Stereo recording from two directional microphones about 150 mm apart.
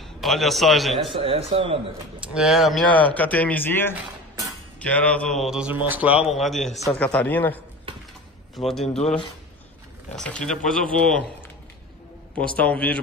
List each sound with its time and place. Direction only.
0.0 s a man's voice: centre (ahead or behind)
1.1 s speech: 40° right (ahead or behind)
2.2 s a man's voice: 5° right (ahead or behind); by 7.6 s 10° left (ahead or behind)
8.5 s a man's voice: centre (ahead or behind)
8.8 s speech: 45° left (ahead or behind)
10.1 s a man's voice: 5° left (ahead or behind)